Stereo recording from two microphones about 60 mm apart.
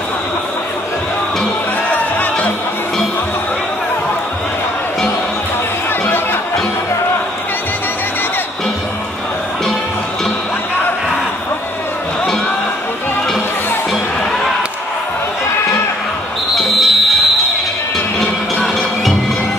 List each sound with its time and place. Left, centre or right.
1.9 s music: left
16.5 s music: centre